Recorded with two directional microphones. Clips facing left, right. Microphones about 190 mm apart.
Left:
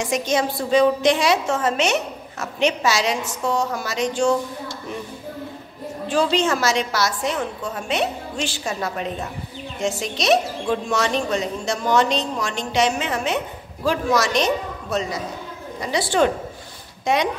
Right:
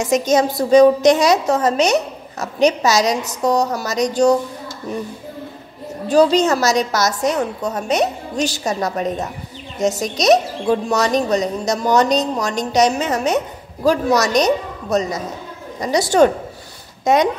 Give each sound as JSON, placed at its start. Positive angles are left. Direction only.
{"t": 0.0, "sound": "a woman's voice", "side_deg": -45}
{"t": 6.0, "sound": "a woman's voice", "side_deg": -40}